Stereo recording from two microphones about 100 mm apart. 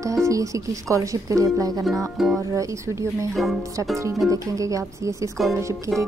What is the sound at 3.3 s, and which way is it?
Speech, centre (ahead or behind).